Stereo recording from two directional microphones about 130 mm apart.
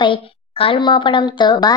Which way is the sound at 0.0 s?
40° left (ahead or behind).